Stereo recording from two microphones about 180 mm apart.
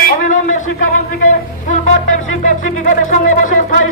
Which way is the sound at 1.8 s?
45° left (ahead or behind).